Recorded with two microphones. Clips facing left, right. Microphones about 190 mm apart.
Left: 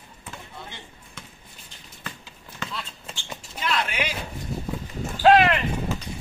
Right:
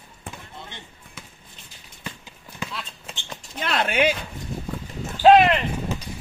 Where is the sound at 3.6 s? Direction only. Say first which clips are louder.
Right 5 dB; 55° right (ahead or behind).